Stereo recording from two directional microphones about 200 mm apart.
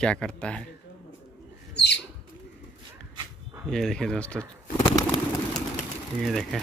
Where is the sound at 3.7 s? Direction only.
Centre (ahead or behind).